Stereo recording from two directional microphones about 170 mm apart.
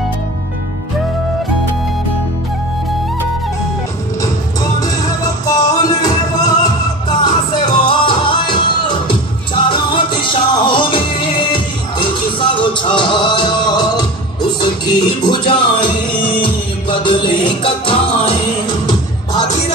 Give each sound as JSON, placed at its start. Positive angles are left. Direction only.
{"t": 4.7, "sound": "music", "side_deg": 20}